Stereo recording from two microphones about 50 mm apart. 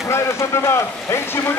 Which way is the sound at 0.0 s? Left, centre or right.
Left.